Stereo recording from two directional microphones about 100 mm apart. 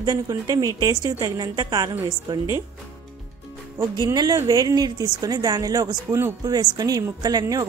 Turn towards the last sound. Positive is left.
turn(degrees=-40)  # may be behind; listen again after turning